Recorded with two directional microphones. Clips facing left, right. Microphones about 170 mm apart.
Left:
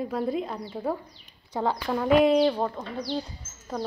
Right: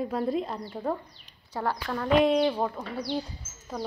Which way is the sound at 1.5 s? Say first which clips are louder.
Left 4 dB; 15° left (ahead or behind).